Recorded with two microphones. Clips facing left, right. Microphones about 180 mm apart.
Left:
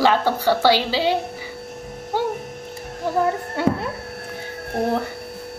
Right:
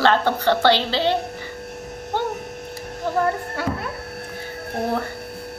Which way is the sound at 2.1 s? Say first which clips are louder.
Left 2 dB; 10° left (ahead or behind).